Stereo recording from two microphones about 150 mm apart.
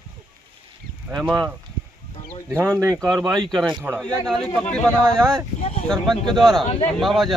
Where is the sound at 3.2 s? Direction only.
Centre (ahead or behind).